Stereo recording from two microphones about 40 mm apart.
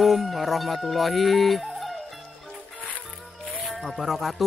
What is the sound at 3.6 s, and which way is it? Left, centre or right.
Music, centre.